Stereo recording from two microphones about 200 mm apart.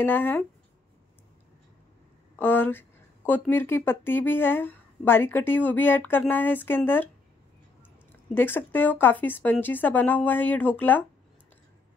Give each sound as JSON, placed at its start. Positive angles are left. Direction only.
{"t": 0.0, "sound": "speech", "side_deg": 10}
{"t": 2.3, "sound": "speech", "side_deg": 10}
{"t": 8.4, "sound": "speech", "side_deg": 10}